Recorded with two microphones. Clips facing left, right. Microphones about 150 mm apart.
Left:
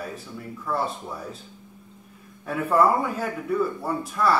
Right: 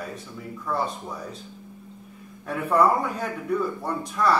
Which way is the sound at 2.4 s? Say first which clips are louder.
Even; centre (ahead or behind).